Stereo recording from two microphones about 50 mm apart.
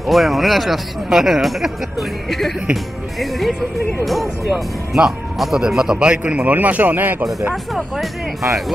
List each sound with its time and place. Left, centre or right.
0.0 s a man's voice: centre; by 7.2 s right
7.7 s speech: centre